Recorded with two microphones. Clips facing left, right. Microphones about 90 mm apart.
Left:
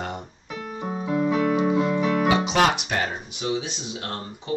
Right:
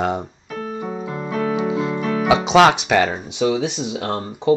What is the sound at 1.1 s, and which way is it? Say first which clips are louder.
Keyboard: left 2 dB; 5° left (ahead or behind).